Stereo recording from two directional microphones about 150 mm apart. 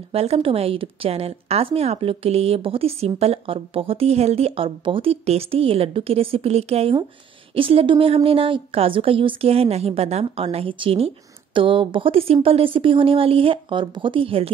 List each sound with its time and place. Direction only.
0.1 s a woman's voice: 40° right (ahead or behind)